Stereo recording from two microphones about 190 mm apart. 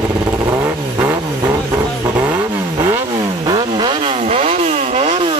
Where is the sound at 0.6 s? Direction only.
10° right (ahead or behind).